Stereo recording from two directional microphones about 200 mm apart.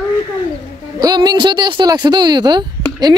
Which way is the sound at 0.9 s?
20° right (ahead or behind).